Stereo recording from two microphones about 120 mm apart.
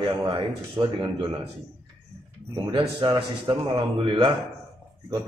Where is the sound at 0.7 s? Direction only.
45° right (ahead or behind).